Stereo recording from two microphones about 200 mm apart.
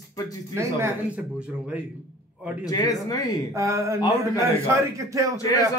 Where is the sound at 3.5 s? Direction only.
15° right (ahead or behind).